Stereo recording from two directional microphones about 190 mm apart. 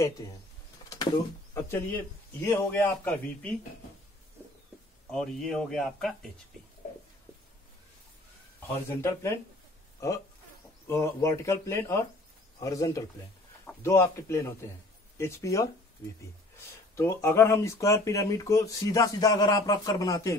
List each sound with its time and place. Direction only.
0.8 s a sound: 20° left (ahead or behind)
2.4 s speech: 10° left (ahead or behind)
5.1 s speech: centre (ahead or behind)
8.8 s speech: 15° left (ahead or behind)